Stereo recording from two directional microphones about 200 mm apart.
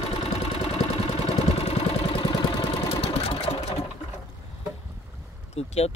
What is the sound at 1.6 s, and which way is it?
Engine, 30° left (ahead or behind).